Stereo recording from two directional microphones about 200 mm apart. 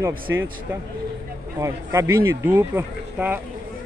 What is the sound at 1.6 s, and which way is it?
Speech, 15° right (ahead or behind).